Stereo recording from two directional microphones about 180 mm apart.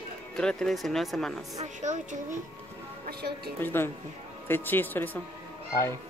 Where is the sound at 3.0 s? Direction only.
60° right (ahead or behind).